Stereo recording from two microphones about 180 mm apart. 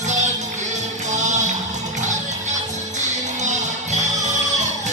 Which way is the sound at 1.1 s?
40° right (ahead or behind).